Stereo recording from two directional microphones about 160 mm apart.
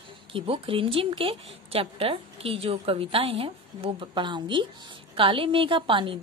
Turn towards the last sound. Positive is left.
turn(degrees=-30)  # may be behind; listen again after turning